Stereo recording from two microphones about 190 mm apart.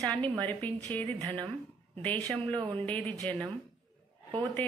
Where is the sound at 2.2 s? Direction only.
25° right (ahead or behind).